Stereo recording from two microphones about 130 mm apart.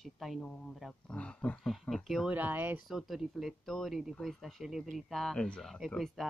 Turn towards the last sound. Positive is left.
turn(degrees=0)  # may be behind; listen again after turning